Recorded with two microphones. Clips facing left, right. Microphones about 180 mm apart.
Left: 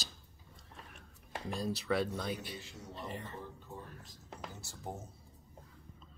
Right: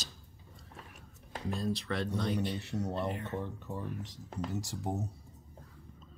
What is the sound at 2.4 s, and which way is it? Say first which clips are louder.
Speech: right 12 dB; 70° right (ahead or behind).